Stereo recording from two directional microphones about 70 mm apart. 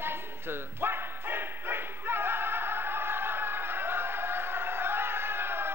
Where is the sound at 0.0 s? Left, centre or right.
Right.